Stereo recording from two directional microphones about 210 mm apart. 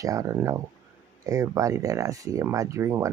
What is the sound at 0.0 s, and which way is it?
Speech, 15° right (ahead or behind).